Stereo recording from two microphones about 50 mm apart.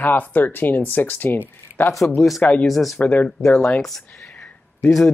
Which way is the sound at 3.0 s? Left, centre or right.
Left.